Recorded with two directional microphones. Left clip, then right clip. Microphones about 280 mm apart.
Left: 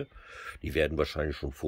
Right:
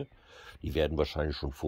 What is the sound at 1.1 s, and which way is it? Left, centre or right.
Speech, centre.